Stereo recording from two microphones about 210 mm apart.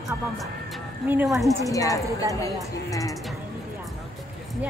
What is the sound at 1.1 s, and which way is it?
Speech, 10° right (ahead or behind).